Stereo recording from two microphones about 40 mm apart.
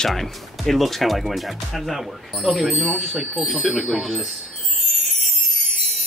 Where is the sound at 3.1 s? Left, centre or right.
Right.